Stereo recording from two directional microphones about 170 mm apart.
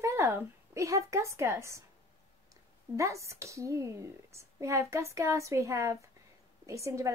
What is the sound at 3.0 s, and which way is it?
A woman's voice, 15° right (ahead or behind).